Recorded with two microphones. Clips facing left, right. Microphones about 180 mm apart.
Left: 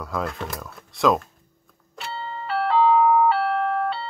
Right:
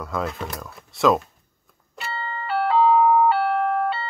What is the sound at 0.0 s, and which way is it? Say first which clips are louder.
Speech: right 1 dB; centre (ahead or behind).